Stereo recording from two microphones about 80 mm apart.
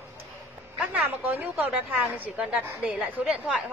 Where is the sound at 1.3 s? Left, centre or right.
Centre.